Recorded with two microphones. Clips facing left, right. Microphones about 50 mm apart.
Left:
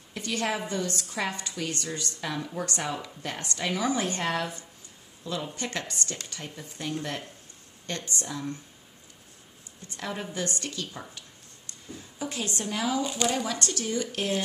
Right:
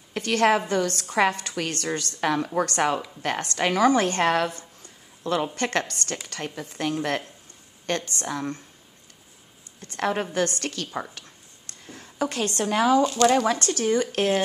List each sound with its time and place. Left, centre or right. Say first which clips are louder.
0.1 s a woman's voice: right 9 dB; right
9.8 s a woman's voice: right 9 dB; right
13.0 s speech: right 9 dB; centre
13.3 s speech: right 9 dB; right
13.6 s speech: right 7 dB; right